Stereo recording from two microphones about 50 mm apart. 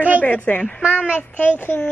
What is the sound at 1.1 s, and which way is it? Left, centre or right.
Speech, left.